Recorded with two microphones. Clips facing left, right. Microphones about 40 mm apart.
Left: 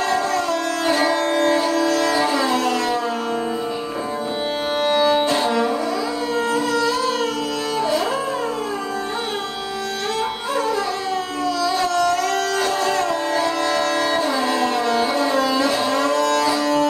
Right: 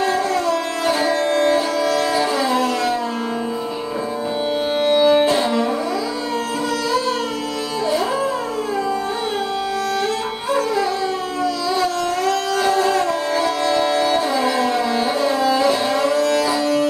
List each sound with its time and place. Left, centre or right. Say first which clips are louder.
0.1 s music: right 1 dB; centre
0.8 s music: even; centre
1.2 s music: right 1 dB; centre
4.7 s music: right 3 dB; centre
12.6 s music: right 3 dB; centre
13.7 s music: right 2 dB; centre
15.0 s music: even; centre